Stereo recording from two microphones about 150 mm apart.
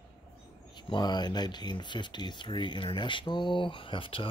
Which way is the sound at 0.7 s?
30° left (ahead or behind).